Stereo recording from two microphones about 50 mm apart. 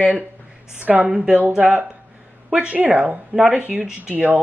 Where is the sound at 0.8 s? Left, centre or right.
Right.